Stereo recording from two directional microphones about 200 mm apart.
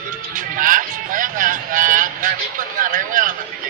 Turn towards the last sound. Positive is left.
turn(degrees=-40)  # may be behind; listen again after turning